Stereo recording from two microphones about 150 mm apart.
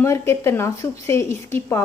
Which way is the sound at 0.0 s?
20° left (ahead or behind).